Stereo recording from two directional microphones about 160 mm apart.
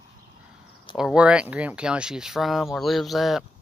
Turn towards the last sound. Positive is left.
turn(degrees=0)  # may be behind; listen again after turning